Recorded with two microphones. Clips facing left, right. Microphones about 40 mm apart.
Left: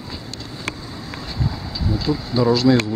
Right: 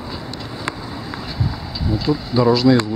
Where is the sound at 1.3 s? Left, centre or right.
Centre.